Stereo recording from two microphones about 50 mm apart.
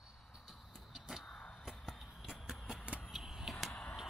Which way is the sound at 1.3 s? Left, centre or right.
Centre.